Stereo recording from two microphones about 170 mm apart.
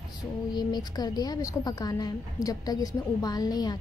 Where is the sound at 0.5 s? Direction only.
25° left (ahead or behind).